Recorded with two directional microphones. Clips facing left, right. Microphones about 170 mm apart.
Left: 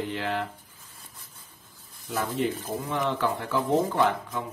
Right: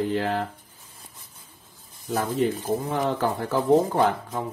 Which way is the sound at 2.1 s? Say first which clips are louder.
Right 4 dB; 35° right (ahead or behind).